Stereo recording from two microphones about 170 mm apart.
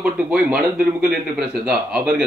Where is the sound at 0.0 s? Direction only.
5° right (ahead or behind).